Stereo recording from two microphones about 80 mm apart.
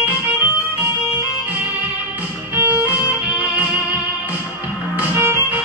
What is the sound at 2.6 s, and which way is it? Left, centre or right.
Music, centre.